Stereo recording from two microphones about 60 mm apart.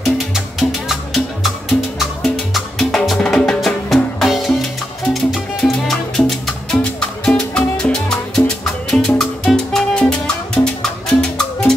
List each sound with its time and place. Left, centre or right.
0.6 s music: centre
3.6 s music: centre
5.6 s salsa music: centre